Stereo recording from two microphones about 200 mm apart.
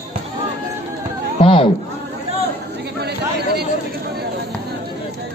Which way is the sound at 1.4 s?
30° left (ahead or behind).